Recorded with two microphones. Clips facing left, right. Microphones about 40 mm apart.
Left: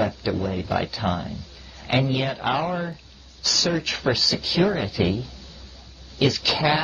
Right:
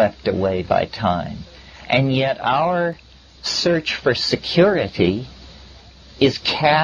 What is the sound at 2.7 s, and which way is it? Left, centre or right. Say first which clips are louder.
Speech: right 8 dB; right.